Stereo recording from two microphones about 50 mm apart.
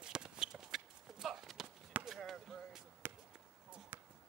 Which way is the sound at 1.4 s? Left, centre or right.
Centre.